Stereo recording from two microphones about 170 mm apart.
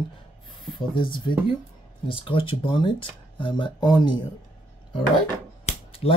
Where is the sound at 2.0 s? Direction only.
30° left (ahead or behind).